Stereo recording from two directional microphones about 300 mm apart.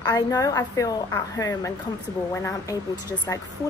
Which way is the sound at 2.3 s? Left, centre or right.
Centre.